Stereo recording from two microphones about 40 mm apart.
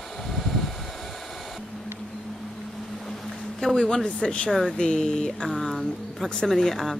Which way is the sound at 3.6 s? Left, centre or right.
Left.